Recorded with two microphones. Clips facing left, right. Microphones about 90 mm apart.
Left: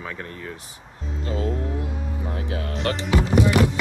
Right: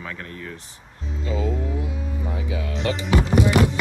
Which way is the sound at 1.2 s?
50° left (ahead or behind).